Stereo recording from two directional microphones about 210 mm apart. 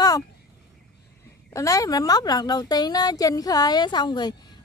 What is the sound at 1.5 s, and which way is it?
A woman's voice, 15° left (ahead or behind).